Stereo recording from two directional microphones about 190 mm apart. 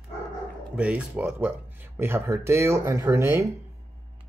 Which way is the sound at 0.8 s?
5° right (ahead or behind).